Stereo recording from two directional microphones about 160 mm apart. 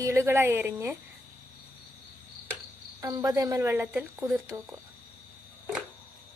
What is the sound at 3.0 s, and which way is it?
Speech, 20° right (ahead or behind).